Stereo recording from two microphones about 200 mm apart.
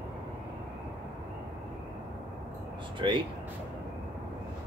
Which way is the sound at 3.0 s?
25° right (ahead or behind).